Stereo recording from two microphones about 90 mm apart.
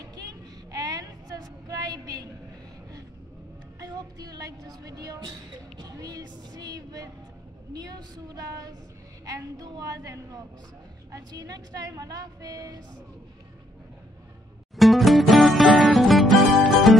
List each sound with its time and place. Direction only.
0.7 s a sound: 45° right (ahead or behind)
3.8 s music: 45° right (ahead or behind)
7.7 s a woman's voice: 45° right (ahead or behind)
14.8 s music: centre (ahead or behind)